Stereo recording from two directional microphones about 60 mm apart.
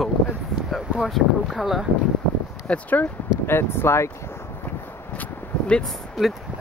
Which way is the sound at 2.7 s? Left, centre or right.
Left.